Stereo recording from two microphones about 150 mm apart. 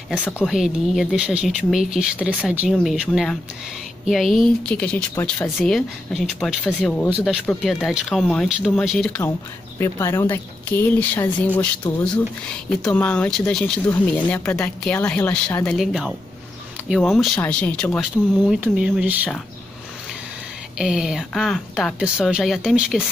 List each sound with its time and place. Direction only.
0.4 s a woman's voice: 5° right (ahead or behind)
4.0 s a woman's voice: centre (ahead or behind)
9.8 s speech: 20° left (ahead or behind)
12.8 s a woman's voice: 10° left (ahead or behind); by 19.2 s 10° right (ahead or behind)
20.7 s a woman's voice: 5° right (ahead or behind)